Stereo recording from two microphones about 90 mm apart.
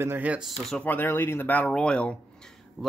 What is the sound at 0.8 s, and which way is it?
Speech, 20° left (ahead or behind).